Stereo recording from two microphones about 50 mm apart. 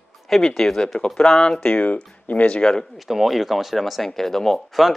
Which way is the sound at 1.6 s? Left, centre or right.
Left.